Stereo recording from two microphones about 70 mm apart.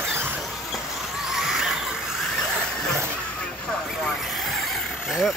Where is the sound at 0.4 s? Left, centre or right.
Centre.